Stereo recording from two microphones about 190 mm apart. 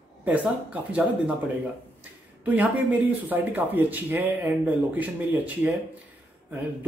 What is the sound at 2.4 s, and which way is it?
Speech, 10° right (ahead or behind).